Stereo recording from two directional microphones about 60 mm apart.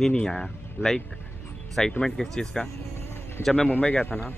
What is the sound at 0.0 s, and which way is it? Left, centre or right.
Speech, centre.